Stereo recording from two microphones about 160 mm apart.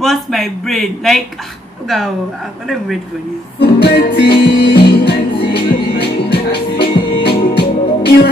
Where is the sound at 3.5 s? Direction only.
85° left.